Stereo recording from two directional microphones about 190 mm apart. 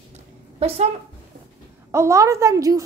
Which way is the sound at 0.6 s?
30° right (ahead or behind).